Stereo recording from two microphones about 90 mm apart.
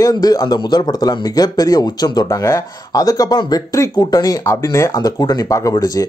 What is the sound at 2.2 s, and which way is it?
Speech, 30° left (ahead or behind).